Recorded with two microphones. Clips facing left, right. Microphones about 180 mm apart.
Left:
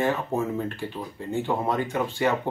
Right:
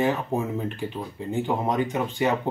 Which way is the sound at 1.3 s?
15° right (ahead or behind).